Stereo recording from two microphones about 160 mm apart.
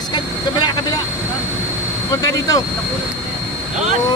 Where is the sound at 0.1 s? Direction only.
30° left (ahead or behind).